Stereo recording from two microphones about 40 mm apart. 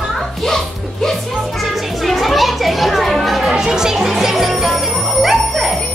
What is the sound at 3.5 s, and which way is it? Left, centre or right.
Music, centre.